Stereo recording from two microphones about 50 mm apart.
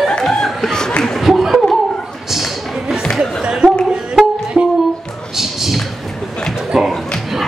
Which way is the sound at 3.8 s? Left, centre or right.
Centre.